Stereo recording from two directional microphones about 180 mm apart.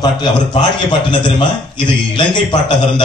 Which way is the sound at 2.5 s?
25° left (ahead or behind).